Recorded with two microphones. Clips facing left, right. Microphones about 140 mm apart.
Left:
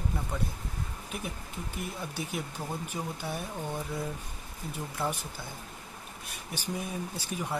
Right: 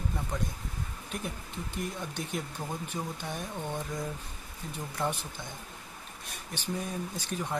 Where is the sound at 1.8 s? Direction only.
5° left (ahead or behind).